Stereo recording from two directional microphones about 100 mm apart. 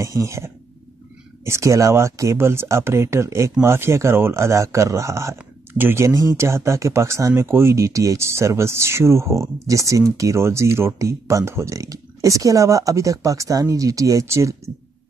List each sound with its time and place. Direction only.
0.0 s speech: 30° right (ahead or behind)